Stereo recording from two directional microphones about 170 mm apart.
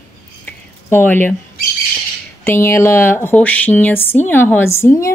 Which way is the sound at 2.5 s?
15° left (ahead or behind).